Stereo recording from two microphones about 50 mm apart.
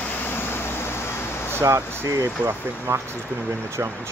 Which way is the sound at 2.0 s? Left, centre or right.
Right.